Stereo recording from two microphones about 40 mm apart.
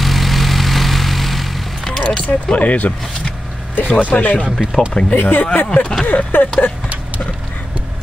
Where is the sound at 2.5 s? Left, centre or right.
Left.